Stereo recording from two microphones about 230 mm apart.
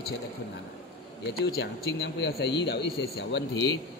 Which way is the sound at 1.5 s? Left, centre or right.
Left.